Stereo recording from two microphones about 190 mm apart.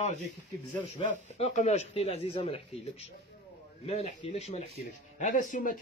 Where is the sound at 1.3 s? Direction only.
35° left (ahead or behind).